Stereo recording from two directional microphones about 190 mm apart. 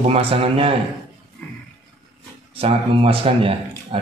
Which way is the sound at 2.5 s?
30° right (ahead or behind).